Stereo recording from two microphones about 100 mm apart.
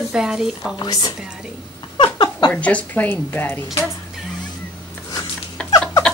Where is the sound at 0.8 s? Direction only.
45° left (ahead or behind).